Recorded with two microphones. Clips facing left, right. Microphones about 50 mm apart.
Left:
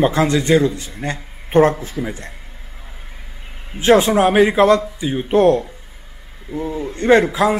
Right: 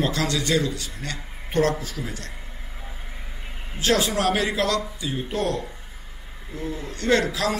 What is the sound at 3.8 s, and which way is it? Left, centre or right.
A man's voice, left.